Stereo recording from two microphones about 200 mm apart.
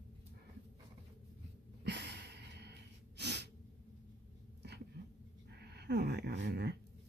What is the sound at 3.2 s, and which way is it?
Sneeze, 55° right (ahead or behind).